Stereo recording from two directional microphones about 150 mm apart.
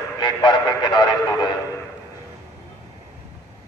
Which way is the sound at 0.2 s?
30° left (ahead or behind).